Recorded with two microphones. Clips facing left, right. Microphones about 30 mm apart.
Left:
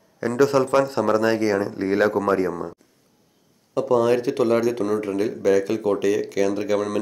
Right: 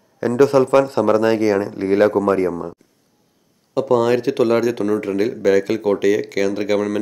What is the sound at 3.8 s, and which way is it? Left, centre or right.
Speech, right.